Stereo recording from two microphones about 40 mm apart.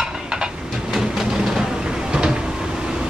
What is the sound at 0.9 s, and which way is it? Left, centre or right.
Train, centre.